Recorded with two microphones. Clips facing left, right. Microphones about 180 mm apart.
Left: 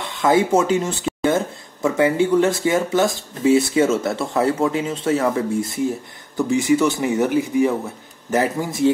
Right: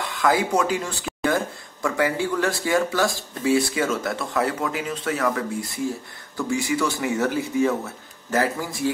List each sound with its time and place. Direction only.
0.0 s speech: 25° left (ahead or behind)